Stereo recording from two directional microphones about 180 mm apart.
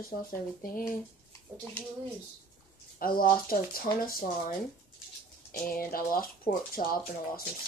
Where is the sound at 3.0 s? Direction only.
55° left (ahead or behind).